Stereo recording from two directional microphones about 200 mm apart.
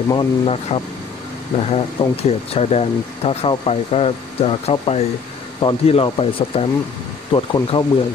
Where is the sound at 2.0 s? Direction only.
30° left (ahead or behind).